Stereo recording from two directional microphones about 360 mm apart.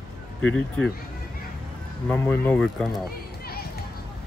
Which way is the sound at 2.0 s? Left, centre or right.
Centre.